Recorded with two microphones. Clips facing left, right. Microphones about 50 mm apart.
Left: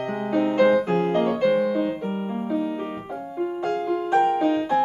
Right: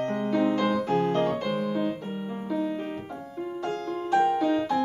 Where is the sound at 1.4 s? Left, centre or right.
Left.